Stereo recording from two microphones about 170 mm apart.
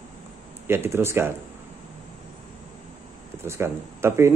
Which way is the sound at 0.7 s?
15° right (ahead or behind).